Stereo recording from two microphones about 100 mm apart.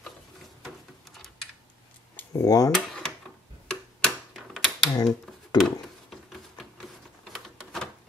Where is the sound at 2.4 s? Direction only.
35° left (ahead or behind).